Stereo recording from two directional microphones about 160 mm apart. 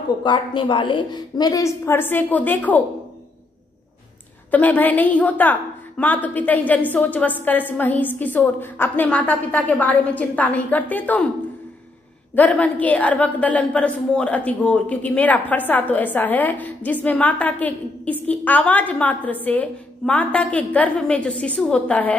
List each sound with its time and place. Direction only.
0.2 s a woman's voice: 30° left (ahead or behind); by 2.8 s 10° left (ahead or behind)
4.5 s a woman's voice: 10° left (ahead or behind)
12.4 s a woman's voice: 10° left (ahead or behind)